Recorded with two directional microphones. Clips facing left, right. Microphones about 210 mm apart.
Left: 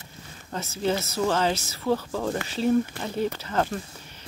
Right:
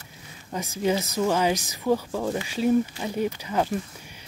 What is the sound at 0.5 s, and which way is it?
Speech, 15° right (ahead or behind).